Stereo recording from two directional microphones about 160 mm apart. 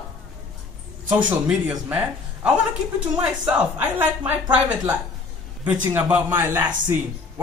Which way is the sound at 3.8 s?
10° right (ahead or behind).